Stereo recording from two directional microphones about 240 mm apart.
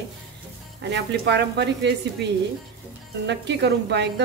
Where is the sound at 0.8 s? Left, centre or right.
Right.